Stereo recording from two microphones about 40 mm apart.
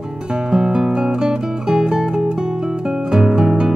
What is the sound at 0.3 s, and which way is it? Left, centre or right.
Music, centre.